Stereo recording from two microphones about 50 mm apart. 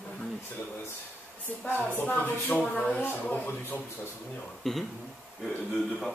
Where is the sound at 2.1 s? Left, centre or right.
Left.